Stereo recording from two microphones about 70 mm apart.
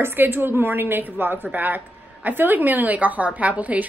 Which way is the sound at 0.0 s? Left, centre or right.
Right.